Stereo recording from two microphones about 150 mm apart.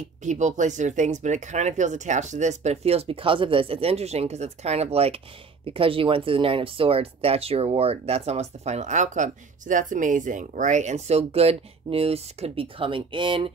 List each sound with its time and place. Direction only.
0.2 s speech: 55° right (ahead or behind); by 13.5 s 35° right (ahead or behind)